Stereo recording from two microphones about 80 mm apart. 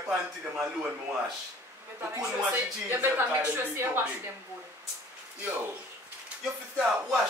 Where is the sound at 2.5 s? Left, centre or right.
Right.